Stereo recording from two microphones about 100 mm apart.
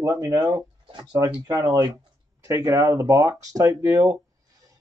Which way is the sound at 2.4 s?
35° right (ahead or behind).